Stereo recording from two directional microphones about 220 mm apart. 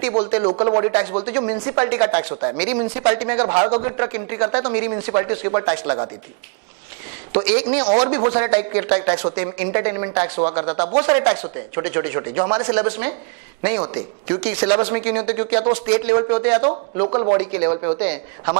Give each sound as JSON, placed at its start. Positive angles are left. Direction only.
{"t": 0.2, "sound": "speech", "side_deg": -10}
{"t": 3.5, "sound": "a man's voice", "side_deg": -30}
{"t": 3.9, "sound": "speech", "side_deg": -15}
{"t": 7.3, "sound": "speech", "side_deg": -10}
{"t": 17.1, "sound": "a man's voice", "side_deg": -30}
{"t": 17.4, "sound": "speech", "side_deg": -10}